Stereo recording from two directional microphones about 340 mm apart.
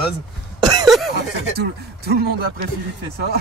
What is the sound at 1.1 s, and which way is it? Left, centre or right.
Speech, right.